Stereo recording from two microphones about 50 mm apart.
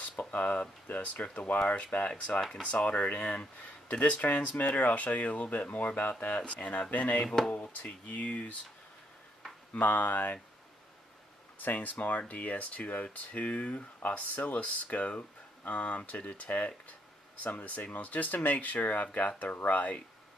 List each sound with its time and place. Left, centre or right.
0.2 s speech: left
7.2 s speech: centre
7.8 s speech: left
9.8 s speech: left
11.6 s speech: left